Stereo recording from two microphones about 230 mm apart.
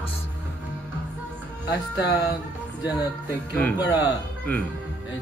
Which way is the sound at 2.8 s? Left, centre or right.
Centre.